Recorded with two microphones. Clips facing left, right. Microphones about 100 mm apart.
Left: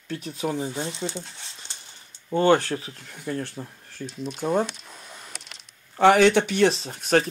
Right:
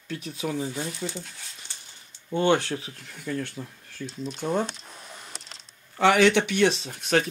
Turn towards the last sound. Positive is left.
turn(degrees=35)  # may be behind; listen again after turning